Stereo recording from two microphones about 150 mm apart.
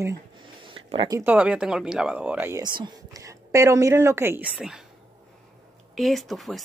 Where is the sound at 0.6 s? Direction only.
35° right (ahead or behind).